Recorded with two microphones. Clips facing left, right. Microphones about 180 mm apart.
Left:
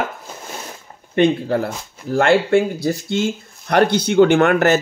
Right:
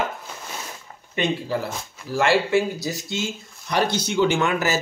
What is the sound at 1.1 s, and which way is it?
Speech, 55° left (ahead or behind).